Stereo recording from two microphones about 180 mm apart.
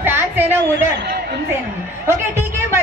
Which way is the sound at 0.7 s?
65° right (ahead or behind).